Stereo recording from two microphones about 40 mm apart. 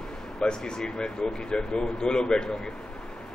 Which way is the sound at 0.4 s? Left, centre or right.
Centre.